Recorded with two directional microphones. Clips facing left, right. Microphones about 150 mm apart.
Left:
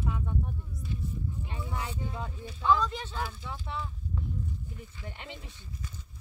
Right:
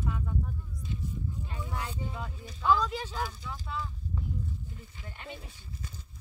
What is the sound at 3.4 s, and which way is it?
Speech, 25° left (ahead or behind).